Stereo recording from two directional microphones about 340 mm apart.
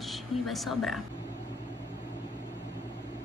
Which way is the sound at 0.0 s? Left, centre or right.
Centre.